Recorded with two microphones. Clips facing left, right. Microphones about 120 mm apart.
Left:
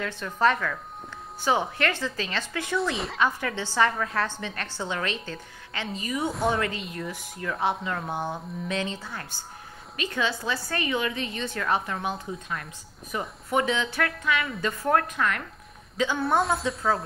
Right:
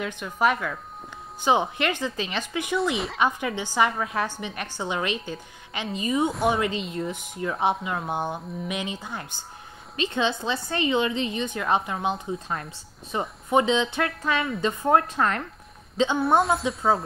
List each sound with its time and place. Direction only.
0.0 s a woman's voice: 15° right (ahead or behind)
15.1 s speech: 35° right (ahead or behind)
16.3 s speech: centre (ahead or behind)
16.6 s speech: 25° right (ahead or behind)